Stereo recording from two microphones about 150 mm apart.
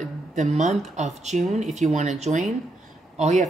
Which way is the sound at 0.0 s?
50° right (ahead or behind).